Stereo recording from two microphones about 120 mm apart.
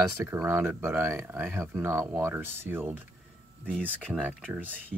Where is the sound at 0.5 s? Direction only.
20° right (ahead or behind).